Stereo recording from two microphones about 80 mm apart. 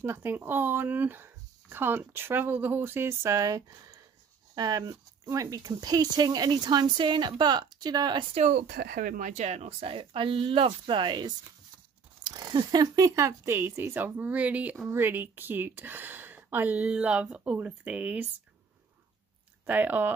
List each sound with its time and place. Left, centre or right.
0.0 s speech: right
9.9 s speech: right
12.4 s speech: right; by 18.3 s centre
19.6 s speech: right